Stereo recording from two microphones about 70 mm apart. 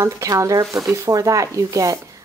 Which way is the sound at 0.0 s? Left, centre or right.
Right.